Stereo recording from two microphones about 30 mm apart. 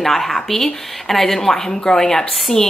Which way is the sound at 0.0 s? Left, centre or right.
Centre.